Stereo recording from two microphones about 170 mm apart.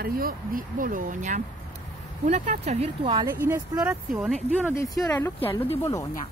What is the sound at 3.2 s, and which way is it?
Speech, 15° right (ahead or behind).